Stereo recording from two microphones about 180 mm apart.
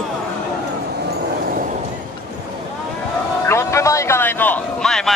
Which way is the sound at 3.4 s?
15° left (ahead or behind).